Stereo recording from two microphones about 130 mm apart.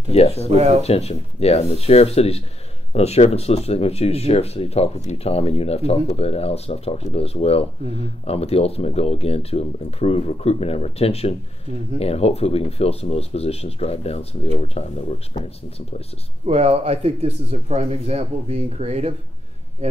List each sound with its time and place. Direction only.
0.1 s speech: 50° left (ahead or behind)
0.6 s speech: 60° right (ahead or behind)
0.8 s speech: 55° left (ahead or behind)
16.4 s speech: 50° right (ahead or behind)